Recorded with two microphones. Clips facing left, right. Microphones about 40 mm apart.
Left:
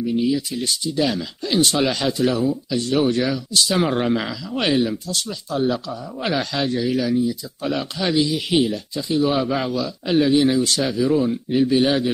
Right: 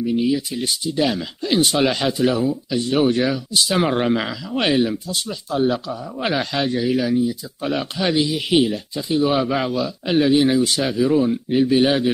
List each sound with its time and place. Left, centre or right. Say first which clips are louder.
0.0 s a man's voice: right 1 dB; centre